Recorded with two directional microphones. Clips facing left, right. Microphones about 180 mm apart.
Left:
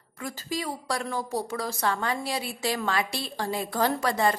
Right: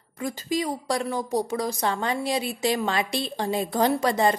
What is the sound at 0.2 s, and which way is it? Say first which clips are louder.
A woman's voice: right 6 dB; 20° right (ahead or behind).